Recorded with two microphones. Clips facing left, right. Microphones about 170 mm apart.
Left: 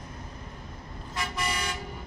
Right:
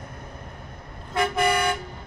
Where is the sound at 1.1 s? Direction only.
55° right (ahead or behind).